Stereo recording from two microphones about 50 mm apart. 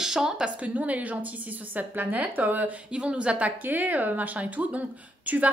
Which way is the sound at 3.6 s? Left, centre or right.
Right.